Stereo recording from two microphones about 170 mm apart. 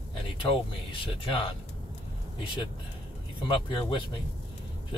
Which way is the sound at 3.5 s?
30° left (ahead or behind).